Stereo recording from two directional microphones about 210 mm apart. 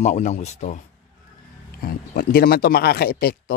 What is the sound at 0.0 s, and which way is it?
Speech, 35° left (ahead or behind).